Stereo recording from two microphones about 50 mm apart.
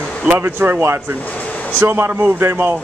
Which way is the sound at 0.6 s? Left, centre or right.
Right.